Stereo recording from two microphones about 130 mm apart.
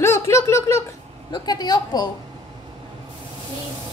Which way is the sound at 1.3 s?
30° left (ahead or behind).